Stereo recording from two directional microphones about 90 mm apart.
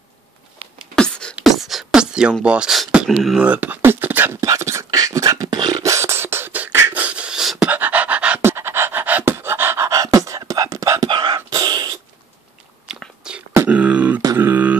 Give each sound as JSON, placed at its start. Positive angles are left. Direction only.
{"t": 0.9, "sound": "beatboxing", "side_deg": 10}
{"t": 1.4, "sound": "beatboxing", "side_deg": 0}
{"t": 2.4, "sound": "speech", "side_deg": -10}
{"t": 3.3, "sound": "beatboxing", "side_deg": -15}
{"t": 5.9, "sound": "beatboxing", "side_deg": -30}
{"t": 6.9, "sound": "pant", "side_deg": -15}
{"t": 8.4, "sound": "pant", "side_deg": -25}
{"t": 11.1, "sound": "whispering", "side_deg": -60}
{"t": 11.3, "sound": "a sound", "side_deg": -45}
{"t": 12.8, "sound": "biting", "side_deg": -5}
{"t": 13.7, "sound": "beatboxing", "side_deg": -15}